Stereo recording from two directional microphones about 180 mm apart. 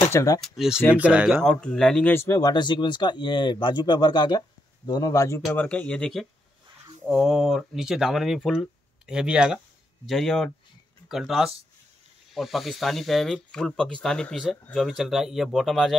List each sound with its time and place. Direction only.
0.1 s speech: 20° left (ahead or behind)
0.4 s speech: 5° right (ahead or behind)